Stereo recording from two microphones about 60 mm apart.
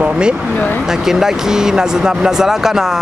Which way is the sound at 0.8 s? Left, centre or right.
Centre.